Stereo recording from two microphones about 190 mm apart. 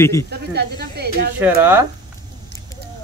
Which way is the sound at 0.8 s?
55° right (ahead or behind).